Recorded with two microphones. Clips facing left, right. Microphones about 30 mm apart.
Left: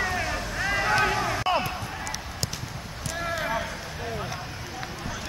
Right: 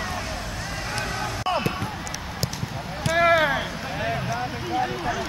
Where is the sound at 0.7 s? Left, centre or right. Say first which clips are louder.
Left 9 dB; left.